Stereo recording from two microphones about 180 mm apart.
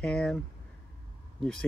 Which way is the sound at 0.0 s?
5° left (ahead or behind).